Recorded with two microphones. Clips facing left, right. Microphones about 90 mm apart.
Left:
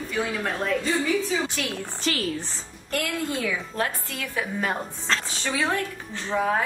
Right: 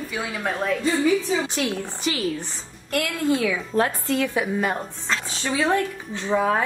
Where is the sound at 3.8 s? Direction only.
25° right (ahead or behind).